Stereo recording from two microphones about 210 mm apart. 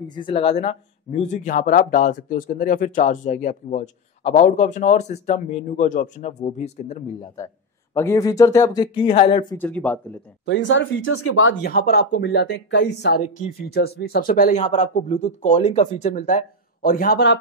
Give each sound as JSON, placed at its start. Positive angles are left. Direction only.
{"t": 0.1, "sound": "speech", "side_deg": 25}
{"t": 7.2, "sound": "a man's voice", "side_deg": 15}
{"t": 9.6, "sound": "a man's voice", "side_deg": 5}
{"t": 10.4, "sound": "speech", "side_deg": 60}
{"t": 11.6, "sound": "speech", "side_deg": 45}
{"t": 13.2, "sound": "speech", "side_deg": 40}